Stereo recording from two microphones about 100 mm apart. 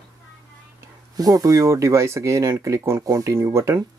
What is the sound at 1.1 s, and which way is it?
Speech, 35° right (ahead or behind).